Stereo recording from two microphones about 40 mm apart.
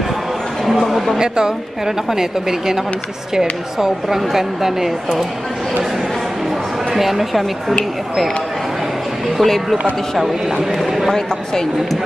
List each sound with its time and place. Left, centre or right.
0.7 s a sound: centre
1.1 s a woman's voice: centre
7.0 s a man's voice: centre
9.4 s a man's voice: centre